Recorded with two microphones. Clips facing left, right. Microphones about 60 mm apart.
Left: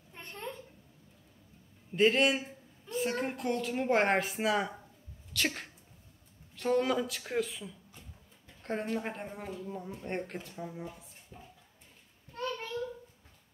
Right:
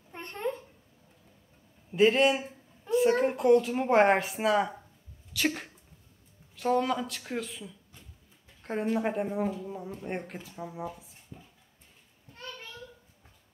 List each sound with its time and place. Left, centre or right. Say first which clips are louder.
0.1 s babbling: right 8 dB; right
1.9 s a woman's voice: right 3 dB; centre
11.3 s a sound: right 2 dB; left